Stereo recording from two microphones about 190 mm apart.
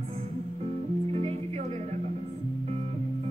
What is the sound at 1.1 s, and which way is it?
Music, 35° right (ahead or behind).